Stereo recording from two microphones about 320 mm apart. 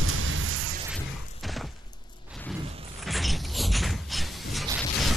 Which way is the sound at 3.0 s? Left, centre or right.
Centre.